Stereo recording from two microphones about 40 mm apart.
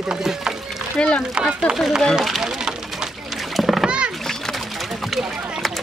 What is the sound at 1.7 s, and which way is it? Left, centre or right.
Speech, right.